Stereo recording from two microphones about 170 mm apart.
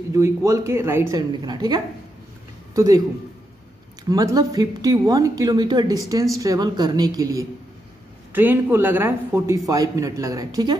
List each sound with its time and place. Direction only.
0.1 s a man's voice: 15° right (ahead or behind)
4.1 s a woman's voice: 20° right (ahead or behind)
8.3 s a man's voice: 10° right (ahead or behind)